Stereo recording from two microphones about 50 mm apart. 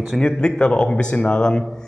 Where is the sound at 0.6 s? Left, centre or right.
Centre.